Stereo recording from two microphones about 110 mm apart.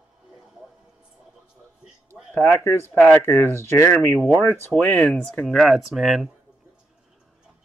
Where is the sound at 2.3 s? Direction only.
20° left (ahead or behind).